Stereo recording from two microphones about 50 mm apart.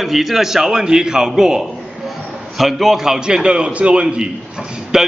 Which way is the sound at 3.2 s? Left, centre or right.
Centre.